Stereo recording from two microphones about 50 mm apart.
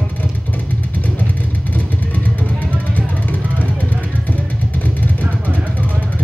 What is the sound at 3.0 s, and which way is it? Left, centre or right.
Vehicle, left.